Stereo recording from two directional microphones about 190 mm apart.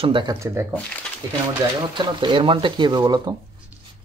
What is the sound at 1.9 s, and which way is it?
Speech, 25° right (ahead or behind).